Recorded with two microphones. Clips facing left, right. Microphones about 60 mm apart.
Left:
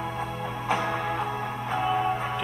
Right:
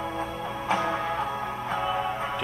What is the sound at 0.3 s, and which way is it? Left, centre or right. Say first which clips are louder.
Music: left 1 dB; left.